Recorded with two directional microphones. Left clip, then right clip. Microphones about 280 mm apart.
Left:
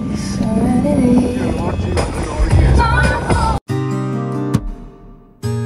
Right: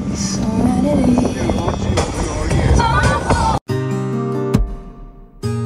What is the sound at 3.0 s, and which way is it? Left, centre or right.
Music, centre.